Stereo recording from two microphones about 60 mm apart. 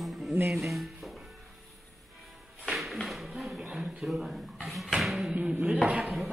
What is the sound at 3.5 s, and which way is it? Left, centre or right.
Speech, centre.